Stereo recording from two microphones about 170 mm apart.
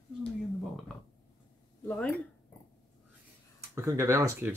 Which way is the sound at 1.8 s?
5° left (ahead or behind).